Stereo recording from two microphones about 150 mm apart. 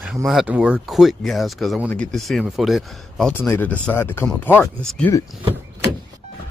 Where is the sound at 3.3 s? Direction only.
15° left (ahead or behind).